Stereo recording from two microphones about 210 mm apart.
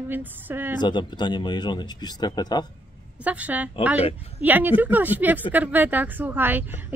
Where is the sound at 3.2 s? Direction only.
5° right (ahead or behind).